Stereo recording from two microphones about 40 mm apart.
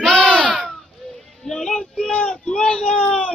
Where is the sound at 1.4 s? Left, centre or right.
Centre.